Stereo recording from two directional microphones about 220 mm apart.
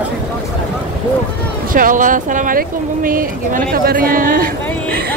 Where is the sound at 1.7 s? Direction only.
40° right (ahead or behind).